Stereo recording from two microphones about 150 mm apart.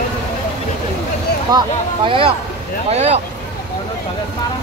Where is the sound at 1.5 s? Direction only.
25° right (ahead or behind).